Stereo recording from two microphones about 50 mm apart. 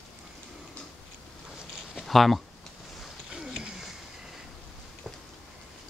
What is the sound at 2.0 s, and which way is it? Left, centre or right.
Speech, centre.